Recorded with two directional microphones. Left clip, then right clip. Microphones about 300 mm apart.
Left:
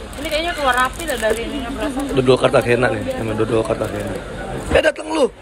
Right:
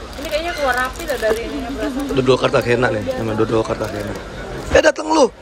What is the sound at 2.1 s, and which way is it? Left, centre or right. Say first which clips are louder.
A man's voice: left 1 dB; centre.